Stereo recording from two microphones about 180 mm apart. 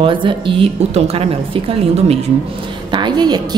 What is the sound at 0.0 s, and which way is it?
A woman's voice, 25° right (ahead or behind).